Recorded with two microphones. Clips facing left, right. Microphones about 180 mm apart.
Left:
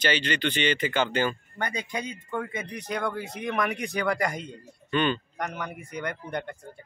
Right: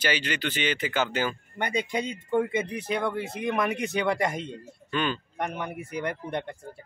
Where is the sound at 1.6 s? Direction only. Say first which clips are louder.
Right 4 dB; 25° right (ahead or behind).